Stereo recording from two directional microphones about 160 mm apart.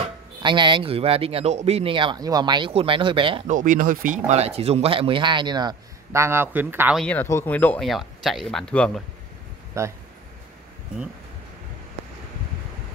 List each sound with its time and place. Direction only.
0.4 s speech: 30° right (ahead or behind)
3.4 s speech: 55° right (ahead or behind); by 7.0 s 10° right (ahead or behind)
7.0 s speech: 10° left (ahead or behind)
9.8 s speech: 20° right (ahead or behind)